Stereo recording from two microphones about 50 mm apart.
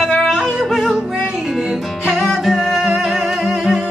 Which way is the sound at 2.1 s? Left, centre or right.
Centre.